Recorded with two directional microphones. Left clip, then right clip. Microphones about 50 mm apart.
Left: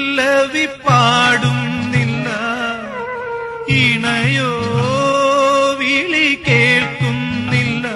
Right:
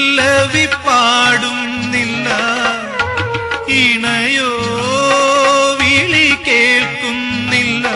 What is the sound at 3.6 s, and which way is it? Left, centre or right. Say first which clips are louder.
Music: right 2 dB; left.